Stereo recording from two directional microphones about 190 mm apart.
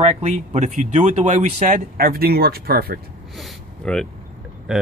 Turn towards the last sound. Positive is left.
turn(degrees=-5)  # may be behind; listen again after turning